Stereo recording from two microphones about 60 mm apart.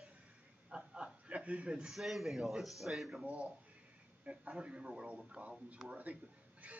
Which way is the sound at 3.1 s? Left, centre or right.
Centre.